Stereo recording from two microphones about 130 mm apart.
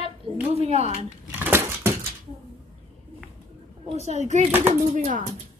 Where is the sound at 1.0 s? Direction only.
15° right (ahead or behind).